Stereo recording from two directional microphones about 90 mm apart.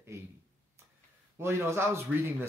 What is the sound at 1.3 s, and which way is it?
A man's voice, 30° right (ahead or behind).